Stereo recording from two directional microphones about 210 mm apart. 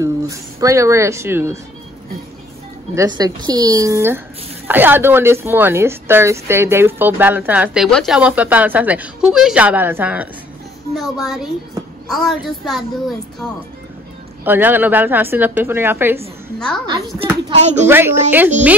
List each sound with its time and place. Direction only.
0.0 s speech: 15° right (ahead or behind)
2.9 s a woman's voice: 15° right (ahead or behind); by 12.4 s centre (ahead or behind)
14.4 s speech: 10° right (ahead or behind)
16.5 s a woman's voice: 5° left (ahead or behind)
16.8 s speech: 20° right (ahead or behind)
17.8 s speech: 10° right (ahead or behind)